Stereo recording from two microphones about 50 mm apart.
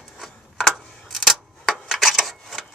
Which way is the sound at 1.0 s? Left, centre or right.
Centre.